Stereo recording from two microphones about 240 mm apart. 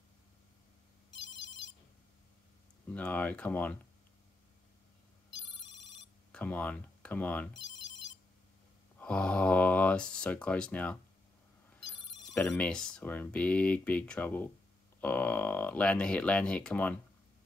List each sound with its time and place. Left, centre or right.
1.2 s ringtone: left
2.9 s speech: centre
6.3 s speech: centre
7.5 s telephone bell ringing: left
9.0 s speech: centre
12.4 s speech: centre